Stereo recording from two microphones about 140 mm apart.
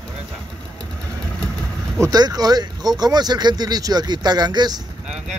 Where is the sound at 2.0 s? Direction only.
25° right (ahead or behind).